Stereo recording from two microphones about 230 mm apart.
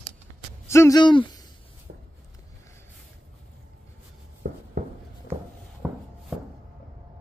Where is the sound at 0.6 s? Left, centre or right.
Centre.